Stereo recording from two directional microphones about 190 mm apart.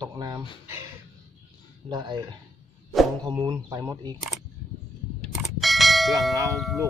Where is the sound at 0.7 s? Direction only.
15° right (ahead or behind).